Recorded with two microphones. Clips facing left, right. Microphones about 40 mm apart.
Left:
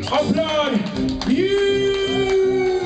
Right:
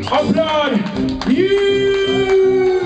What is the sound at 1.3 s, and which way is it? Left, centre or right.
Music, centre.